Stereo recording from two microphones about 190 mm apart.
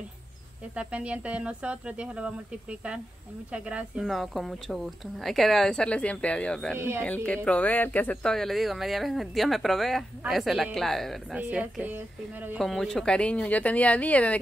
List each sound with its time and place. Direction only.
0.7 s speech: 5° right (ahead or behind)
6.8 s speech: 10° right (ahead or behind)
7.2 s speech: 5° left (ahead or behind)